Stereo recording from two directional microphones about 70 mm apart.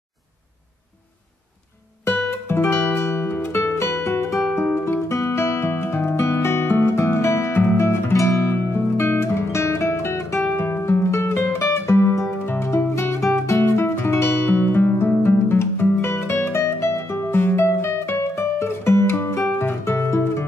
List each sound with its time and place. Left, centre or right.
2.0 s music: left
14.5 s music: left